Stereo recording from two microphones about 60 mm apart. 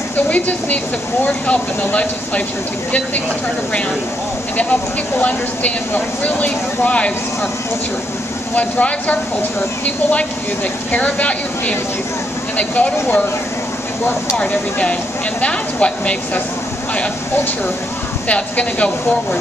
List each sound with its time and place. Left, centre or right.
0.3 s speech: left
4.6 s speech: left
8.5 s speech: left
10.9 s speech: left
14.3 s speech: left
18.3 s speech: left